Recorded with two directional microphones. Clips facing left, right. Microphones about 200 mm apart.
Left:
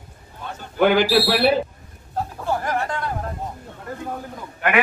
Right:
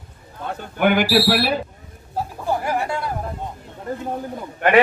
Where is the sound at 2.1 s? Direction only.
10° right (ahead or behind).